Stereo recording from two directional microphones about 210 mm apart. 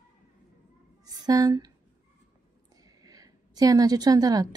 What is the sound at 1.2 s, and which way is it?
Speech, 15° right (ahead or behind).